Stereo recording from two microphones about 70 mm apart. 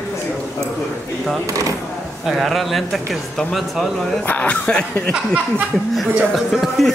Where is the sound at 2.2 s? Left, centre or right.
Centre.